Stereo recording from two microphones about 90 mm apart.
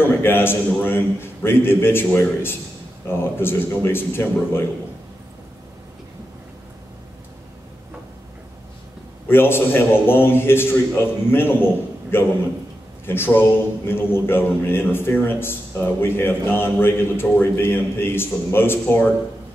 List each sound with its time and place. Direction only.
0.2 s a man's voice: 25° left (ahead or behind)
9.3 s a man's voice: 25° left (ahead or behind)